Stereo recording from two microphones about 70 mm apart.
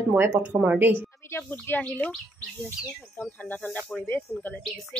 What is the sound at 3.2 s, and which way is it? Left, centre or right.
Speech, left.